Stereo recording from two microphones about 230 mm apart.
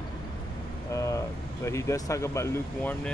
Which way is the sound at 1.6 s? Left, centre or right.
Centre.